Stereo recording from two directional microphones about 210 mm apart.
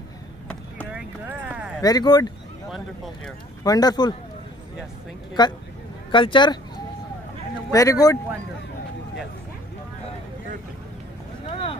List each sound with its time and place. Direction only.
0.9 s clip-clop: 5° right (ahead or behind)
1.8 s speech: 20° left (ahead or behind)
3.6 s speech: 20° left (ahead or behind)
5.4 s speech: 20° left (ahead or behind)
7.7 s speech: 15° left (ahead or behind)